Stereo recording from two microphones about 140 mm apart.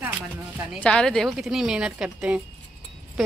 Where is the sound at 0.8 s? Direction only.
5° left (ahead or behind).